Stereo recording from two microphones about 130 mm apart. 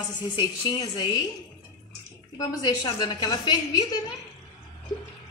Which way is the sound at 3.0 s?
35° left (ahead or behind).